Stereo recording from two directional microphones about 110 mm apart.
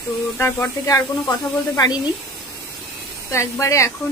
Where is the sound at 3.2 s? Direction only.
25° left (ahead or behind).